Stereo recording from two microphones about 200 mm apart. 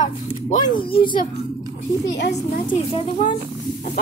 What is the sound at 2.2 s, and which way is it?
Speech, 55° left (ahead or behind).